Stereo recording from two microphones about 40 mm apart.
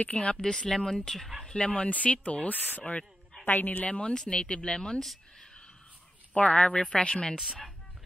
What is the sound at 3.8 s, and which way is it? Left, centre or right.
Speech, left.